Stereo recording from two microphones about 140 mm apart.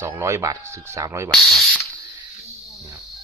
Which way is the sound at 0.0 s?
20° right (ahead or behind).